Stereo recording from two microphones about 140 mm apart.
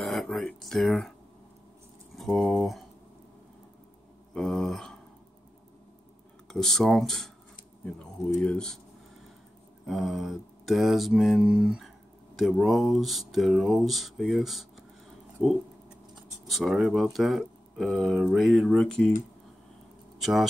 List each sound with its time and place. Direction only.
0.0 s speech: centre (ahead or behind)
2.1 s speech: centre (ahead or behind)
4.3 s speech: 5° left (ahead or behind)
6.4 s speech: 5° left (ahead or behind)
8.4 s speech: 5° left (ahead or behind)
9.8 s speech: centre (ahead or behind)
20.2 s speech: centre (ahead or behind)